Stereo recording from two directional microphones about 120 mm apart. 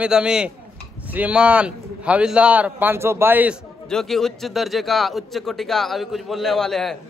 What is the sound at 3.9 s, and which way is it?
A man's voice, 5° left (ahead or behind).